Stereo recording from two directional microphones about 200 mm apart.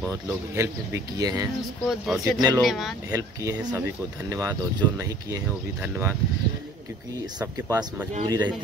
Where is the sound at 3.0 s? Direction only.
15° right (ahead or behind).